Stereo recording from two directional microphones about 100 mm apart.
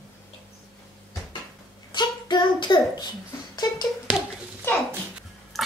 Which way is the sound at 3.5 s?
40° left (ahead or behind).